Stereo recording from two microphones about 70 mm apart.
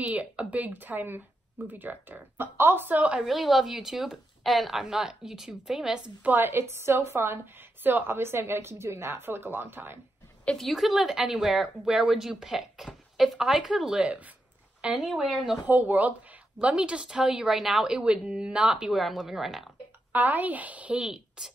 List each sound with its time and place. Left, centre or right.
0.1 s speech: centre
3.0 s a woman's voice: centre
3.3 s speech: centre
6.2 s a woman's voice: right
10.6 s speech: centre
14.0 s a woman's voice: right; by 15.6 s centre
15.6 s a woman's voice: right; by 19.7 s centre
20.1 s speech: right
21.0 s speech: centre